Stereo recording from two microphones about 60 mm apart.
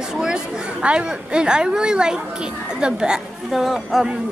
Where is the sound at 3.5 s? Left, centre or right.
Centre.